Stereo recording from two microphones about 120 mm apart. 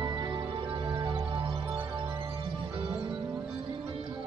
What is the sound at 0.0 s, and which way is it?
Music, 35° right (ahead or behind).